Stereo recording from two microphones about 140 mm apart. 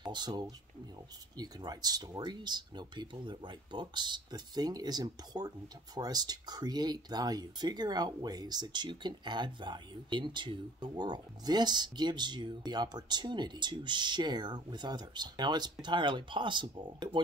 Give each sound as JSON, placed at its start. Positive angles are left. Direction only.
{"t": 0.0, "sound": "speech", "side_deg": -30}